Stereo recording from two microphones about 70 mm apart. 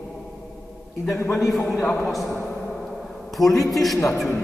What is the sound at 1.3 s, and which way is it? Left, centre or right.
A man's voice, centre.